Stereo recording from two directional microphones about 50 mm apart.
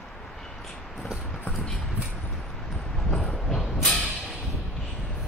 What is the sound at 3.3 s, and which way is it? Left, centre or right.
Train, centre.